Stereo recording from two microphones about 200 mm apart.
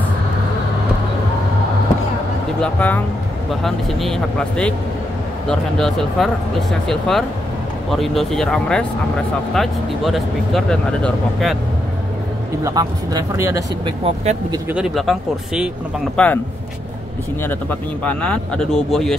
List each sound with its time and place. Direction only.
2.6 s speech: 5° left (ahead or behind)
12.6 s speech: 15° right (ahead or behind)
14.7 s speech: centre (ahead or behind)
17.4 s speech: 10° left (ahead or behind)